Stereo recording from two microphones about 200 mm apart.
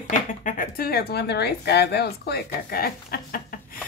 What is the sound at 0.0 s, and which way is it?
Speech, 40° left (ahead or behind).